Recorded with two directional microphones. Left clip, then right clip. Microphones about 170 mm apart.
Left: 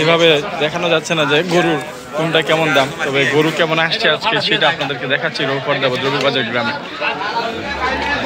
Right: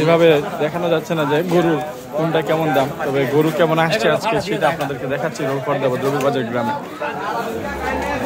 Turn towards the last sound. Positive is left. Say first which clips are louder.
# left 3 dB
turn(degrees=-20)  # may be behind; listen again after turning